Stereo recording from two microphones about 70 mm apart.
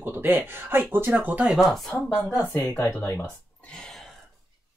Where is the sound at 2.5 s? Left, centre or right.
Left.